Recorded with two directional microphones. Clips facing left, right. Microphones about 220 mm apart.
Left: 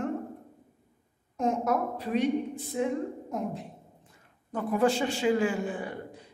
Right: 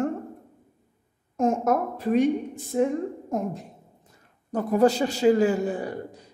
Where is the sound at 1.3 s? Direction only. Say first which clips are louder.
Right 5 dB; 45° right (ahead or behind).